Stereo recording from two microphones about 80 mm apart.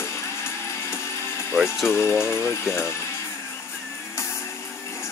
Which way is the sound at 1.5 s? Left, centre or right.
Left.